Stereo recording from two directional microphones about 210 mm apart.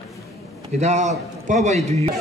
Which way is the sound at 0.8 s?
35° right (ahead or behind).